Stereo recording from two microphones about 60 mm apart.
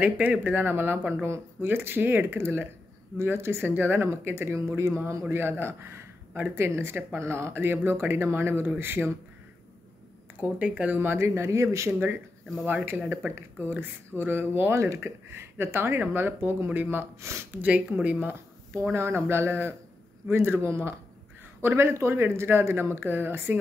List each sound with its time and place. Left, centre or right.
0.0 s speech: right
10.3 s speech: right
11.1 s speech: right
12.6 s speech: right
14.7 s speech: right
15.0 s speech: right
17.2 s speech: right
17.6 s speech: right
18.9 s speech: right